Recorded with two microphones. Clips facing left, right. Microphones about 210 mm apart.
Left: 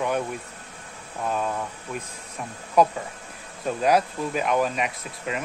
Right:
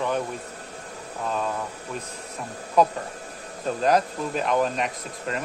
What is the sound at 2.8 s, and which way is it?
Speech, 10° left (ahead or behind).